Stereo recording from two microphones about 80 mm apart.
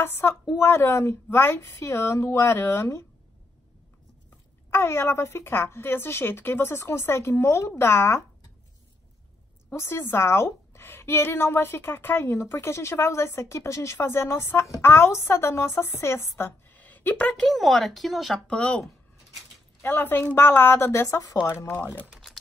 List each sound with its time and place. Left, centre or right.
0.0 s a woman's voice: left
4.6 s a woman's voice: left
9.7 s a woman's voice: left
17.3 s speech: centre
18.5 s speech: centre
19.8 s a woman's voice: left
22.1 s a sound: centre